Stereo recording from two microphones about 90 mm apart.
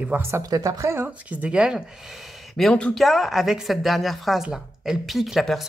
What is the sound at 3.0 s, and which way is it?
Speech, centre (ahead or behind).